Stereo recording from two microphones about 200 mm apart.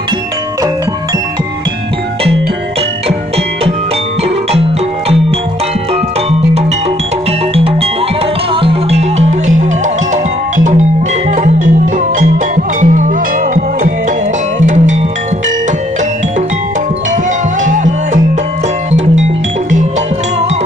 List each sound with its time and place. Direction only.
4.2 s music: 30° right (ahead or behind)
8.5 s music: 30° right (ahead or behind)
12.2 s music: 40° right (ahead or behind)
14.6 s music: 40° right (ahead or behind)
17.6 s music: 40° right (ahead or behind)